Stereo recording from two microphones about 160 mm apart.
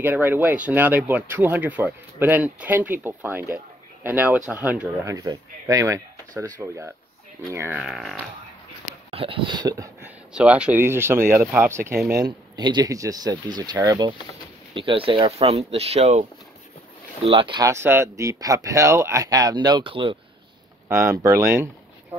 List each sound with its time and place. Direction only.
0.0 s speech: 15° right (ahead or behind)
7.8 s speech: centre (ahead or behind)
9.1 s a sound: 35° right (ahead or behind); by 10.1 s 20° right (ahead or behind)
10.3 s speech: 5° right (ahead or behind); by 17.6 s 30° right (ahead or behind)
17.6 s speech: 15° right (ahead or behind); by 20.2 s 30° right (ahead or behind)
20.9 s speech: 20° right (ahead or behind)